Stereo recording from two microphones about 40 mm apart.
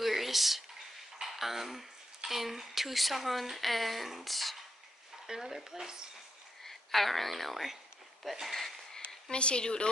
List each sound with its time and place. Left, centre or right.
0.0 s a sound: centre
1.2 s speech: centre
5.2 s speech: centre
6.6 s speech: centre
9.3 s speech: left